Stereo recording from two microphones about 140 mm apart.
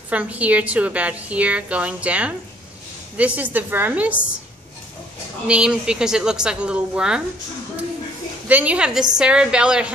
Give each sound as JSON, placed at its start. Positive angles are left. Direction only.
{"t": 0.1, "sound": "a woman's voice", "side_deg": -10}
{"t": 5.5, "sound": "a woman's voice", "side_deg": -5}
{"t": 8.5, "sound": "a woman's voice", "side_deg": -10}